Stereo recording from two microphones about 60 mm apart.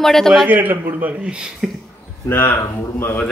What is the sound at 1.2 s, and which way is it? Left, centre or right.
Speech, centre.